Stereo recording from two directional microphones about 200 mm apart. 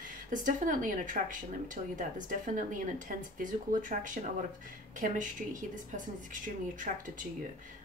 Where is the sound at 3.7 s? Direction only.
40° right (ahead or behind).